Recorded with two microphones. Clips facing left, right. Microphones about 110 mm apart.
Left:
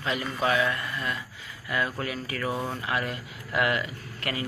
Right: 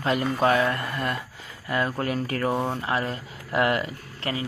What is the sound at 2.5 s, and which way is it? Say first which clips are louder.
Speech: right 4 dB; 30° right (ahead or behind).